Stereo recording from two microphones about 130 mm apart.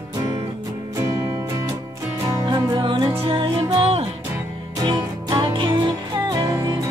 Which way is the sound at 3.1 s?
45° right (ahead or behind).